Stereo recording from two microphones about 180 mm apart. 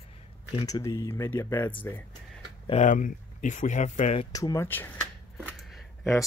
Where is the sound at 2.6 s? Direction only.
40° left (ahead or behind).